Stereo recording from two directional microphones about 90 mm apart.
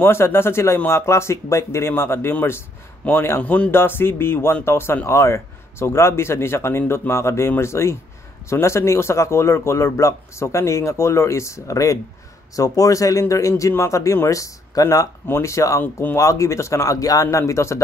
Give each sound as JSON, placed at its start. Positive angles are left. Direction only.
{"t": 0.0, "sound": "speech", "side_deg": 25}
{"t": 15.2, "sound": "speech", "side_deg": 30}
{"t": 15.8, "sound": "speech", "side_deg": 20}
{"t": 16.2, "sound": "speech", "side_deg": 35}